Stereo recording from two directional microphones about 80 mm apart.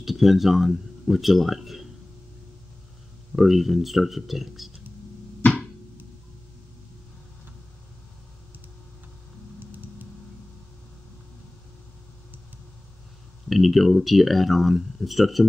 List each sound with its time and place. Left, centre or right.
0.0 s speech: centre
3.3 s speech: centre
9.6 s typing: right
13.5 s speech: centre